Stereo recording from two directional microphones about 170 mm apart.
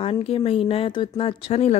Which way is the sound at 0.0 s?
35° left (ahead or behind).